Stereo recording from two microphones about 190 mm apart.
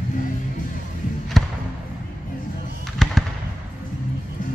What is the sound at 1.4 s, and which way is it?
Basketball bounce, centre (ahead or behind).